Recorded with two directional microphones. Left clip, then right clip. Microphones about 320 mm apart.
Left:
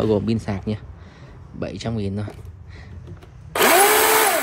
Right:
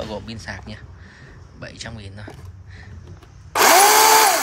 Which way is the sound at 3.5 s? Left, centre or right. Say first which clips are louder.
Right 3 dB; centre.